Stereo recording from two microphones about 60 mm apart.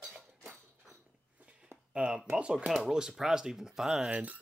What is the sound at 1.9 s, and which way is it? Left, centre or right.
Speech, centre.